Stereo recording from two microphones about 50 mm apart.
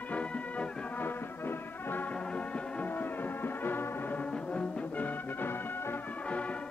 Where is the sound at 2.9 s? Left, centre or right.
Left.